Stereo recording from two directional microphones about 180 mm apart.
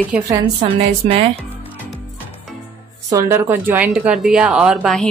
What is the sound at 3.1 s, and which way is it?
A woman's voice, 15° right (ahead or behind).